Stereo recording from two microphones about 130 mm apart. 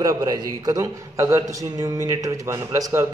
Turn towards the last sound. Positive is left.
turn(degrees=-25)  # may be behind; listen again after turning